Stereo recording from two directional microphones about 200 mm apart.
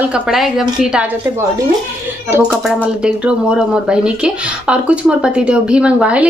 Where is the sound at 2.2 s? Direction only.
10° right (ahead or behind).